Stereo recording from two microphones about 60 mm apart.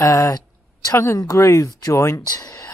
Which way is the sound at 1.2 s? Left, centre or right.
Left.